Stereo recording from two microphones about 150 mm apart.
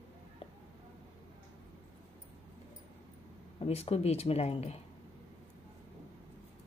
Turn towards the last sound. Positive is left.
turn(degrees=45)  # may be behind; listen again after turning